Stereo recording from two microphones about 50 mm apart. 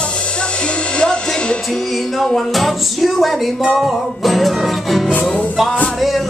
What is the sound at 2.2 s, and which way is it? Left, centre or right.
Music, centre.